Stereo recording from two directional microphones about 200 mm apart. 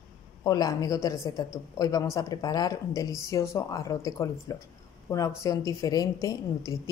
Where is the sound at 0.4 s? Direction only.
15° left (ahead or behind).